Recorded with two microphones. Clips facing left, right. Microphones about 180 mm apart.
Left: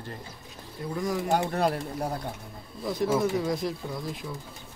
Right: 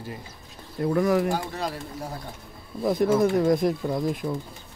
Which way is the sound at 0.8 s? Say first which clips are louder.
Right 8 dB; 65° right (ahead or behind).